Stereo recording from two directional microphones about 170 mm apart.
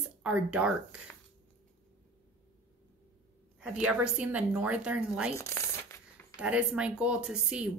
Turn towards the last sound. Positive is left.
turn(degrees=-5)  # may be behind; listen again after turning